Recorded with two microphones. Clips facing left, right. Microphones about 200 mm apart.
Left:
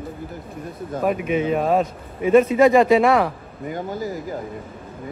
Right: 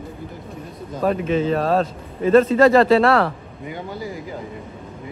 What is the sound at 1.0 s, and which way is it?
A man's voice, 10° left (ahead or behind).